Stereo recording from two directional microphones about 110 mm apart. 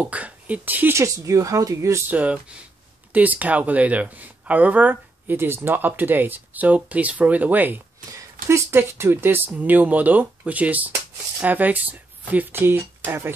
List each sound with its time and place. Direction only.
0.0 s speech: 15° right (ahead or behind); by 2.0 s 30° right (ahead or behind)
2.0 s speech: 15° right (ahead or behind)